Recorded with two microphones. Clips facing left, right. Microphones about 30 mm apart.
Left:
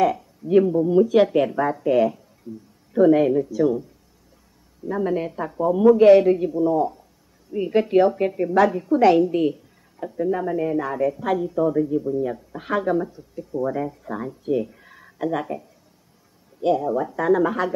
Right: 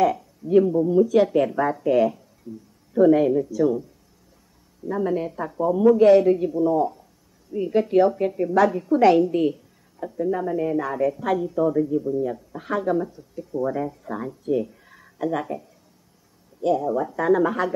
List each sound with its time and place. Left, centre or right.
0.0 s speech: centre
0.8 s speech: left
1.2 s a woman's voice: centre
1.6 s a woman's voice: centre
2.4 s a woman's voice: centre
4.8 s a woman's voice: centre
6.4 s a woman's voice: centre
7.5 s a woman's voice: left; by 9.6 s centre
10.1 s a woman's voice: centre
12.9 s a woman's voice: centre
14.5 s a sound: centre
15.2 s a woman's voice: centre
16.9 s a woman's voice: centre